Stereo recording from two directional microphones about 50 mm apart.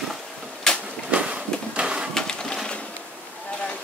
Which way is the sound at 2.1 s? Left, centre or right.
Centre.